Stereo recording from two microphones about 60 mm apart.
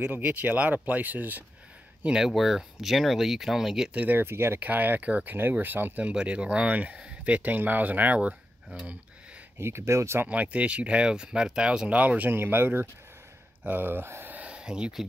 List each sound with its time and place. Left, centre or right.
0.1 s speech: right
2.0 s speech: centre
3.9 s speech: right
4.2 s speech: right
4.6 s speech: right
6.0 s speech: right
9.6 s speech: right
10.2 s speech: right
12.3 s speech: right
14.3 s a sound: centre